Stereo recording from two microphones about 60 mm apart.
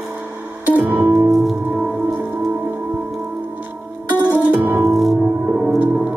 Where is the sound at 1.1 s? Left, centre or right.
Centre.